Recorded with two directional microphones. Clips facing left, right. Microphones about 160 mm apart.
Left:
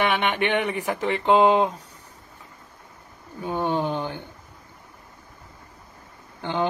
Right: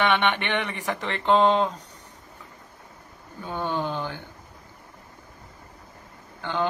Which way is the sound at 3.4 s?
20° left (ahead or behind).